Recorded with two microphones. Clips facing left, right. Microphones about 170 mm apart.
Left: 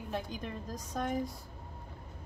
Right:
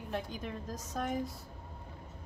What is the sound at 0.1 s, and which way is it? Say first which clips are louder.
A woman's voice: even; centre (ahead or behind).